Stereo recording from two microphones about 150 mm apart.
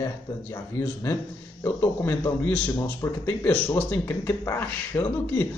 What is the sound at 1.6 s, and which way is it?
Speech, 15° left (ahead or behind).